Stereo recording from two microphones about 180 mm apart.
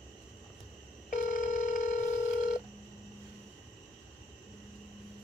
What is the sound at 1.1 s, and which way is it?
Telephone, 45° left (ahead or behind).